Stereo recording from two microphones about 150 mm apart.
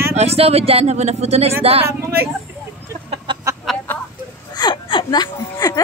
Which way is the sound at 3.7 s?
Centre (ahead or behind).